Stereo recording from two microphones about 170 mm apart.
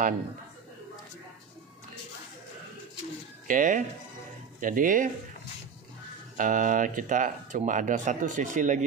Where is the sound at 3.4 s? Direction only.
50° right (ahead or behind).